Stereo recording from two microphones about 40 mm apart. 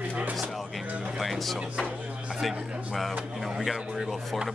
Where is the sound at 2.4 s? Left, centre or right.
Centre.